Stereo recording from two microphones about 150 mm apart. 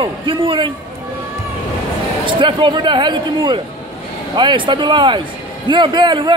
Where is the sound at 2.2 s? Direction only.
35° right (ahead or behind).